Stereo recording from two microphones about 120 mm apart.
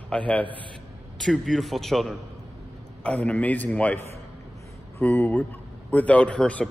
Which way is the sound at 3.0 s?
10° left (ahead or behind).